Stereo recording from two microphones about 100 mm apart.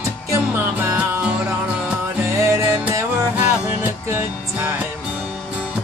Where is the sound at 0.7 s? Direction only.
20° right (ahead or behind).